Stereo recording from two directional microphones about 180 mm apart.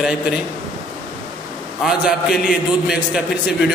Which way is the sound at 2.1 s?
Centre (ahead or behind).